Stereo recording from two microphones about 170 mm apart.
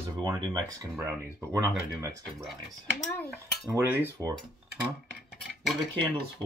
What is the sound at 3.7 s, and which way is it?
Cutlery, 10° right (ahead or behind).